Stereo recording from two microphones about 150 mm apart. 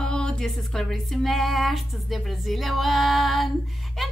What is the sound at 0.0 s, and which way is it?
Music, 5° left (ahead or behind).